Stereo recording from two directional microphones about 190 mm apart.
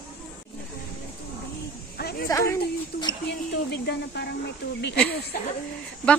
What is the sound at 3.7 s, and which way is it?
Speech, 60° left (ahead or behind).